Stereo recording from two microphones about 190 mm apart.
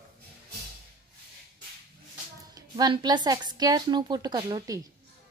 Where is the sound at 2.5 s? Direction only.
20° right (ahead or behind).